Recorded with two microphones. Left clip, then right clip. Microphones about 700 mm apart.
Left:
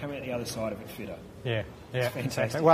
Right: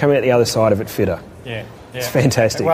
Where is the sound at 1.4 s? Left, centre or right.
Left.